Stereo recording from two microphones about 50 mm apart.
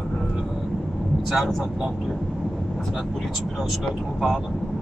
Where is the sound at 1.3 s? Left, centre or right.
Centre.